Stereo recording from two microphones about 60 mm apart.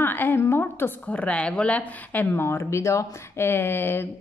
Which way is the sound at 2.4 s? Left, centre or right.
Left.